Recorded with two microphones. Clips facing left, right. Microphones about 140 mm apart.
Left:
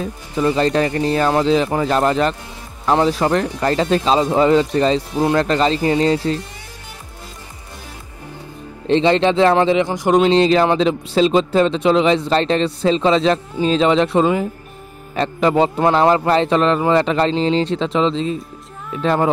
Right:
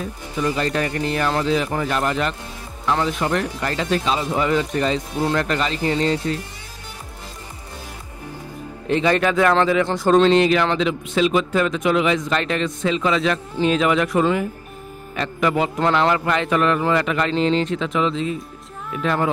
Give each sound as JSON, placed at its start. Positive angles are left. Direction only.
{"t": 0.0, "sound": "speech", "side_deg": 30}
{"t": 8.8, "sound": "speech", "side_deg": 25}
{"t": 10.3, "sound": "speech", "side_deg": 30}